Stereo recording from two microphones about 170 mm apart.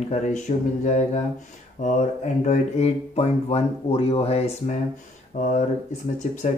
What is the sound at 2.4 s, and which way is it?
Speech, 40° left (ahead or behind).